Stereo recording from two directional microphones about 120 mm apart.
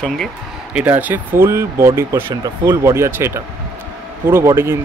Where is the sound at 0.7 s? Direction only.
15° right (ahead or behind).